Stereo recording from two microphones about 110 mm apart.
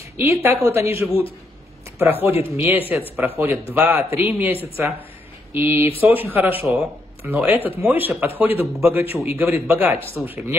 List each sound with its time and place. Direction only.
0.2 s a woman's voice: 20° right (ahead or behind)
2.2 s a man's voice: 15° right (ahead or behind)
6.6 s speech: 5° right (ahead or behind)
7.2 s a man's voice: 15° right (ahead or behind)